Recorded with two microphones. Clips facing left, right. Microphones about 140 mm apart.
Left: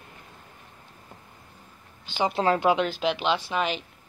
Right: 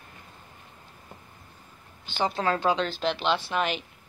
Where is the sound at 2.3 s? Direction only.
20° left (ahead or behind); by 3.3 s 5° left (ahead or behind).